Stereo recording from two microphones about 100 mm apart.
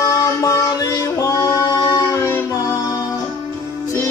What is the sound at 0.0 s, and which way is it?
Music, 40° left (ahead or behind).